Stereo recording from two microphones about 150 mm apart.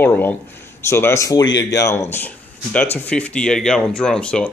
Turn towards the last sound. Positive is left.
turn(degrees=5)  # may be behind; listen again after turning